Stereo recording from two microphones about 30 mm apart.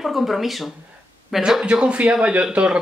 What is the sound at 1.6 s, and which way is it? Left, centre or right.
Speech, right.